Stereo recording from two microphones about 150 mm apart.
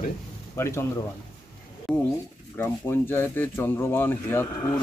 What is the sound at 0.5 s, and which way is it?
Speech, 20° left (ahead or behind).